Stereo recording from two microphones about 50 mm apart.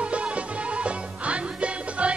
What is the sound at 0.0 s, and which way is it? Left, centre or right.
Music, right.